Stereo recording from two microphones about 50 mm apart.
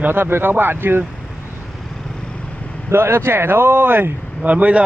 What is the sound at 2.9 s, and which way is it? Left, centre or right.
Speech, right.